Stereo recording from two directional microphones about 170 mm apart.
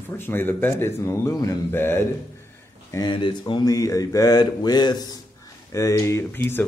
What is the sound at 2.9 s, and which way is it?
Speech, 25° left (ahead or behind).